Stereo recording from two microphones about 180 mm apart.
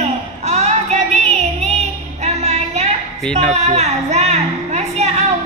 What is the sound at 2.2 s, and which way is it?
Music, 35° right (ahead or behind).